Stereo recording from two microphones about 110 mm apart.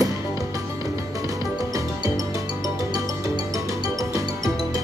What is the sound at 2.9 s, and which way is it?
Music, 30° right (ahead or behind).